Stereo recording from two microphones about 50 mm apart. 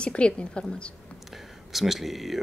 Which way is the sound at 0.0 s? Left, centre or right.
Left.